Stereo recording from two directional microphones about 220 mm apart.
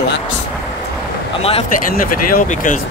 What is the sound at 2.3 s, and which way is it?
Speech, 40° left (ahead or behind).